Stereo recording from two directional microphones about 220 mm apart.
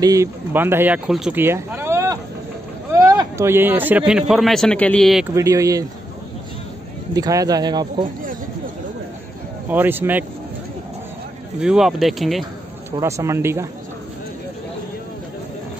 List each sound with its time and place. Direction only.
0.0 s speech: 15° right (ahead or behind); by 5.2 s centre (ahead or behind)
5.3 s speech: 15° right (ahead or behind)
7.2 s speech: 15° right (ahead or behind)
9.7 s speech: 10° right (ahead or behind)
11.6 s speech: centre (ahead or behind)
12.9 s speech: 15° right (ahead or behind)